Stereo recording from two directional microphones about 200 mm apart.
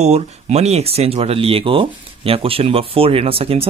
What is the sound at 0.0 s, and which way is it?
Speech, 30° right (ahead or behind).